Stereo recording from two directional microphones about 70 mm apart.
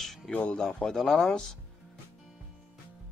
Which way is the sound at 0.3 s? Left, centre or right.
Centre.